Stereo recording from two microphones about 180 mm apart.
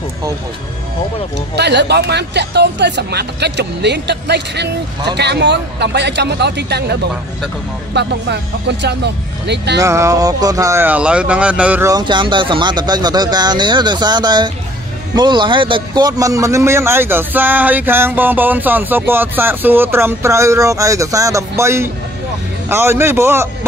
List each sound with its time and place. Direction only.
1.6 s speech: 70° right (ahead or behind)
9.8 s a man's voice: 15° right (ahead or behind)
11.9 s a man's voice: 25° right (ahead or behind)